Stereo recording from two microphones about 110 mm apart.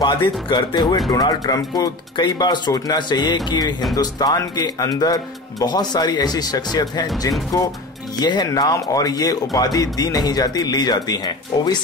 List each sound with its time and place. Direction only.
0.5 s speech: 45° left (ahead or behind)
8.2 s speech: 40° left (ahead or behind)